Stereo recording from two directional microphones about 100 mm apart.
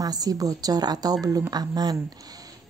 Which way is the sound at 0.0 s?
40° right (ahead or behind).